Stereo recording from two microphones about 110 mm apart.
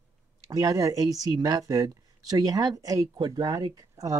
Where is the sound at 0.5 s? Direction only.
30° right (ahead or behind).